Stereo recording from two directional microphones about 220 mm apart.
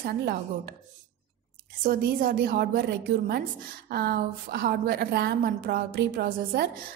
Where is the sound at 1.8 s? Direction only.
40° right (ahead or behind).